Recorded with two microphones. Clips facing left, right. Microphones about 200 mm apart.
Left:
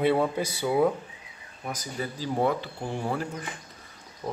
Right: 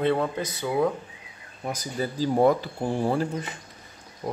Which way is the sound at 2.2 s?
40° right (ahead or behind).